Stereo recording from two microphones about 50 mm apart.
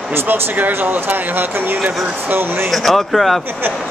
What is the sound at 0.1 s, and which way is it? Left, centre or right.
Speech, right.